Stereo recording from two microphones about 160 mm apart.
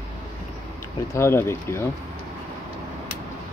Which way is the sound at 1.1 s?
15° left (ahead or behind).